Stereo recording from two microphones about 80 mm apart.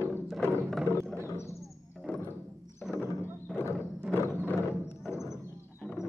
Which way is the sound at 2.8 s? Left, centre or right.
Centre.